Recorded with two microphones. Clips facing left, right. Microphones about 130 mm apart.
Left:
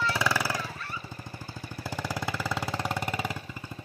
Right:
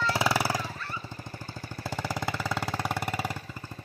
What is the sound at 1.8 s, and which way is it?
Music, centre (ahead or behind).